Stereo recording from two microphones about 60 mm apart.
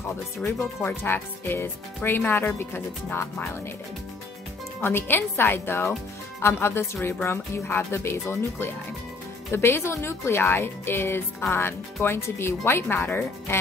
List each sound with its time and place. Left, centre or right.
0.5 s speech: left
4.8 s speech: left